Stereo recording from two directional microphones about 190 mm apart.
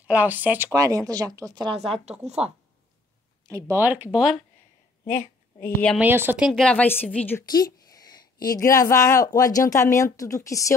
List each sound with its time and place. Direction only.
0.0 s speech: 10° right (ahead or behind)
3.4 s speech: 15° right (ahead or behind)
5.0 s a woman's voice: 45° left (ahead or behind)
5.6 s speech: 5° left (ahead or behind)
5.9 s speech: 10° right (ahead or behind); by 7.4 s 10° left (ahead or behind)
7.4 s speech: 20° left (ahead or behind)